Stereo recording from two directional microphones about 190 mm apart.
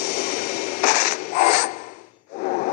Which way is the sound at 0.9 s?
50° left (ahead or behind).